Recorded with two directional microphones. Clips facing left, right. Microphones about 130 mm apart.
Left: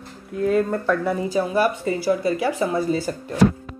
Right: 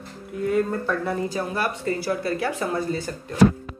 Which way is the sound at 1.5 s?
10° left (ahead or behind).